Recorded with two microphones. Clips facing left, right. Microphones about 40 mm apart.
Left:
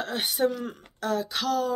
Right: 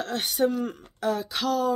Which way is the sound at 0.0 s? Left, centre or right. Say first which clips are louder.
Right 1 dB; centre.